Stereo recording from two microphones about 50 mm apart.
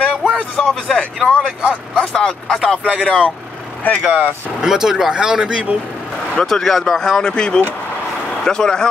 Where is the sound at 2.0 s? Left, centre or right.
Left.